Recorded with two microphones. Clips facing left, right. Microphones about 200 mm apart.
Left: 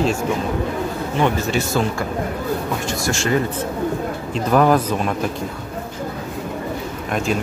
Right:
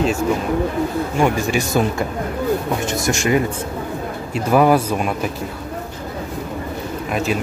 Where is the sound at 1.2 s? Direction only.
15° right (ahead or behind).